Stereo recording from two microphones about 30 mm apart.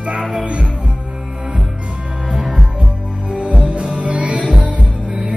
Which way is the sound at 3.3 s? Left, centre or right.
Right.